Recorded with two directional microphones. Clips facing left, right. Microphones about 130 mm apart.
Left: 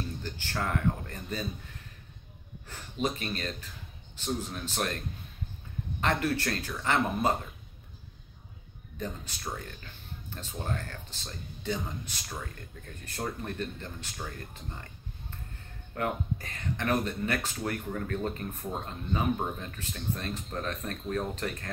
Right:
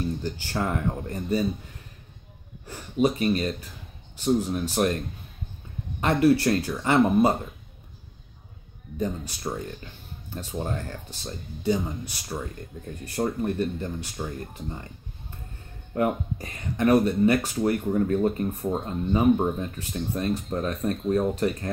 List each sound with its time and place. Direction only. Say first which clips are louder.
0.2 s speech: right 6 dB; 20° right (ahead or behind)
2.6 s speech: right 9 dB; 15° right (ahead or behind)
5.9 s speech: right 9 dB; 15° right (ahead or behind)
8.9 s speech: right 9 dB; 20° right (ahead or behind)
13.0 s speech: right 9 dB; 15° right (ahead or behind)
15.9 s speech: right 7 dB; 20° right (ahead or behind)
17.6 s speech: right 12 dB; 25° right (ahead or behind)